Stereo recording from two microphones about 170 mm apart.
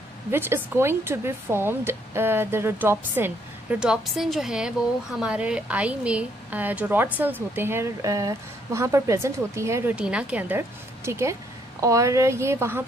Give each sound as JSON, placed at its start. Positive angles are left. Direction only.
{"t": 0.3, "sound": "a woman's voice", "side_deg": -15}